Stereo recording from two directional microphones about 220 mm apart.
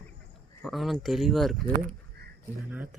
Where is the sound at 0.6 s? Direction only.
Centre (ahead or behind).